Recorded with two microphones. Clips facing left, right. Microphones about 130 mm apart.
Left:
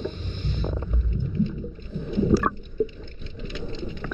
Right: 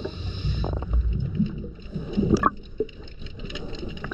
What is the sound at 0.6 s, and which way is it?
Stomach rumble, 15° right (ahead or behind).